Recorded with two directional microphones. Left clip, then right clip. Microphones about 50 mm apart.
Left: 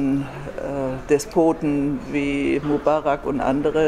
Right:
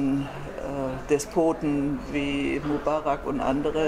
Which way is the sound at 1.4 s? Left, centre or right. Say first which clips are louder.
Left 5 dB; left.